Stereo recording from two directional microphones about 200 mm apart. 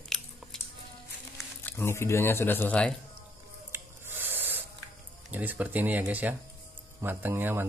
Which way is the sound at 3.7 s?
10° right (ahead or behind).